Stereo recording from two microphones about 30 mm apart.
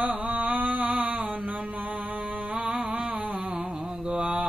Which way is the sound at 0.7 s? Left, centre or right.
Right.